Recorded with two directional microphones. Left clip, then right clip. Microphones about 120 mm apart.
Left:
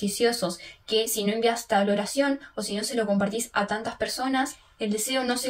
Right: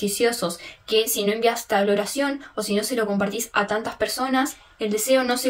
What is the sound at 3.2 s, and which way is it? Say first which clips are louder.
Speech: right 3 dB; 30° right (ahead or behind).